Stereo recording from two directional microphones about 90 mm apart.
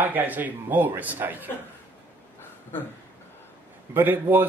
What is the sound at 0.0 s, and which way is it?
Speech, 20° right (ahead or behind).